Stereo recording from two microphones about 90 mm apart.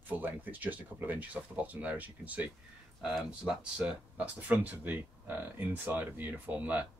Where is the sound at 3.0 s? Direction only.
5° right (ahead or behind).